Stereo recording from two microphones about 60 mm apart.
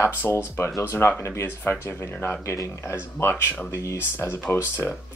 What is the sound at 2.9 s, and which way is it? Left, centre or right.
Speech, left.